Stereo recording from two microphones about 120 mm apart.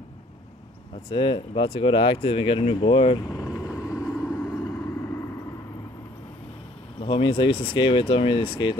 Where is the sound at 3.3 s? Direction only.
25° left (ahead or behind).